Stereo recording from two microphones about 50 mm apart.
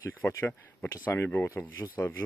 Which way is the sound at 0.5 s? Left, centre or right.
Left.